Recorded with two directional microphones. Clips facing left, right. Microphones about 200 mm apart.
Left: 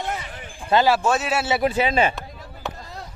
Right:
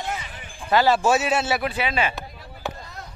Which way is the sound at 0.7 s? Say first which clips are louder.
Left 1 dB; 25° left (ahead or behind).